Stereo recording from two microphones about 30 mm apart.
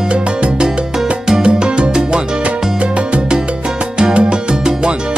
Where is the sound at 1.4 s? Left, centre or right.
Right.